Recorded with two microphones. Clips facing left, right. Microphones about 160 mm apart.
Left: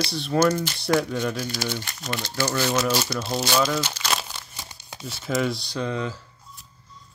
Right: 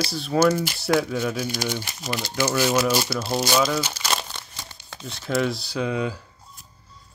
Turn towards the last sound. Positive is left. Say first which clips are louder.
# right 2 dB
turn(degrees=-10)  # may be behind; listen again after turning